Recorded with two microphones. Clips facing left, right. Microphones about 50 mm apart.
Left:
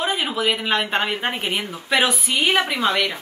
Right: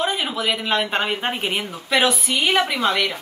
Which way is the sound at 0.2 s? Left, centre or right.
Centre.